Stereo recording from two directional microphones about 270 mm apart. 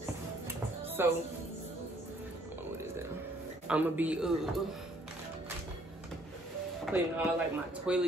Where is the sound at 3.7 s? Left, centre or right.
Centre.